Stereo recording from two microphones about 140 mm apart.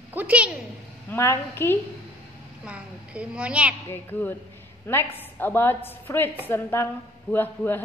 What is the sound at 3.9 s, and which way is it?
A man's voice, 15° left (ahead or behind).